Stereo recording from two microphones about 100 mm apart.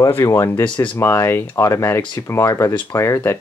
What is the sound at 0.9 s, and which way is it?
Speech, 30° left (ahead or behind).